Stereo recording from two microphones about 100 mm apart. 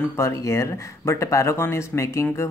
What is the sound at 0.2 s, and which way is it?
Speech, 30° left (ahead or behind).